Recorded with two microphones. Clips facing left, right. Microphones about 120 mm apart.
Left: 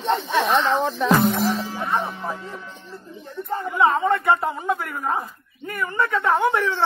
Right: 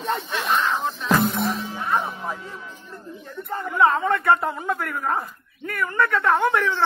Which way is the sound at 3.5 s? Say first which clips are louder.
Even; 5° left (ahead or behind).